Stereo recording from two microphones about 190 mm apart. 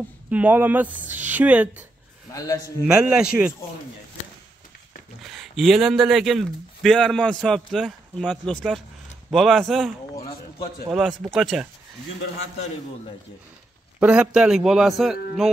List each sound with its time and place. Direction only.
0.3 s speech: 10° right (ahead or behind)
2.3 s speech: 20° left (ahead or behind)
2.9 s speech: 5° right (ahead or behind)
5.2 s speech: centre (ahead or behind)
10.1 s a sound: 30° left (ahead or behind)
10.9 s speech: centre (ahead or behind)
13.9 s speech: 5° right (ahead or behind)